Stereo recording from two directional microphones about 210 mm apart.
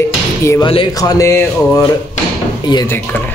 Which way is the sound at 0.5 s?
20° left (ahead or behind).